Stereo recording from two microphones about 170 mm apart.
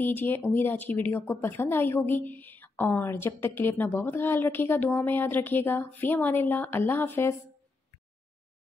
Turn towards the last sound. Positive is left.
turn(degrees=15)  # may be behind; listen again after turning